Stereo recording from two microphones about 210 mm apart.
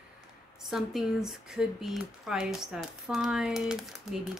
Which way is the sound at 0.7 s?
Centre (ahead or behind).